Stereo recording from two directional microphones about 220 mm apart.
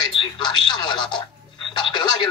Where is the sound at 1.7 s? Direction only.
20° left (ahead or behind).